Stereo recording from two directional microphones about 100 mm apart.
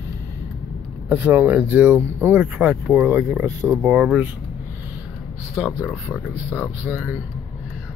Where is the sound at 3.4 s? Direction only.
35° right (ahead or behind).